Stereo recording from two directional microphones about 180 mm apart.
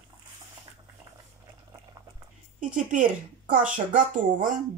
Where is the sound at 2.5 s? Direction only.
45° right (ahead or behind).